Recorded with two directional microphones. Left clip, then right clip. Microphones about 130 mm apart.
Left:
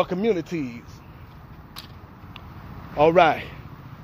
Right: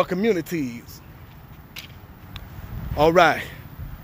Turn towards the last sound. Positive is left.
turn(degrees=-35)  # may be behind; listen again after turning